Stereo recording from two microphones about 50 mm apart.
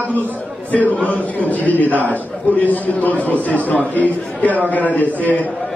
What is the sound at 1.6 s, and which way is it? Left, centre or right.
A man's voice, left.